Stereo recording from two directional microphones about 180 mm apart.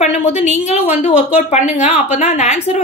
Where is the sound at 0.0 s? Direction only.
35° left (ahead or behind).